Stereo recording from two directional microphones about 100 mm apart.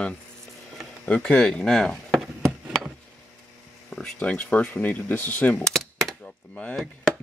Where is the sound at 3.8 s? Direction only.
5° left (ahead or behind).